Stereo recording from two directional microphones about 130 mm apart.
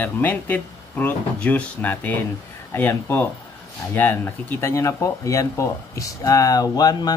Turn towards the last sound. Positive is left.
turn(degrees=30)  # may be behind; listen again after turning